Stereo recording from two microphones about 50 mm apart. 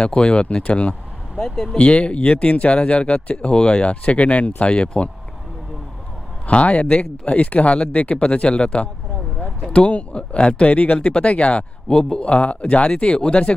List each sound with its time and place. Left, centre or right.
0.0 s speech: centre
1.4 s speech: centre
1.8 s speech: left
6.4 s speech: left